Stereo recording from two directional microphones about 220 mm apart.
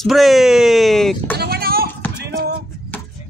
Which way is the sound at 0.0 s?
Centre (ahead or behind).